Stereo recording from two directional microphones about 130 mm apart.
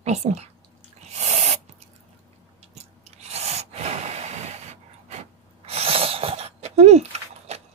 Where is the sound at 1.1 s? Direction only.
65° right (ahead or behind).